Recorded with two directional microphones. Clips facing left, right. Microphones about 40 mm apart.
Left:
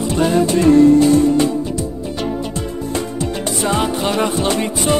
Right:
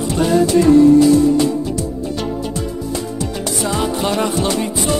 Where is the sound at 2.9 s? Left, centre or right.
Left.